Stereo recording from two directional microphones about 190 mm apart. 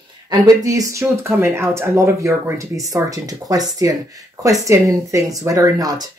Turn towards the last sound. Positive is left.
turn(degrees=-20)  # may be behind; listen again after turning